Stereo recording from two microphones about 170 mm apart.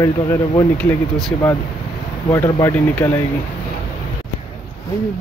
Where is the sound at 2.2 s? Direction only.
15° left (ahead or behind).